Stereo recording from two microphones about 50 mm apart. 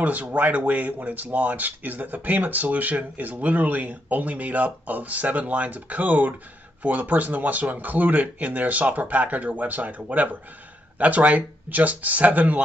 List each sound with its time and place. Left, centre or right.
0.0 s speech: right